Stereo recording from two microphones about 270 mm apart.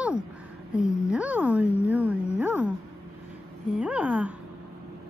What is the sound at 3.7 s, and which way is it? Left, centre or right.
Speech, centre.